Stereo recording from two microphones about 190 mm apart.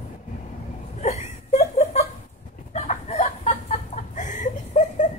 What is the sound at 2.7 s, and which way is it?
Chicken, 35° left (ahead or behind).